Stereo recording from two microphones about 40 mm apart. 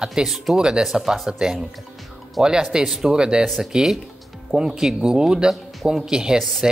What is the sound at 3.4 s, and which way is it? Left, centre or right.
Speech, centre.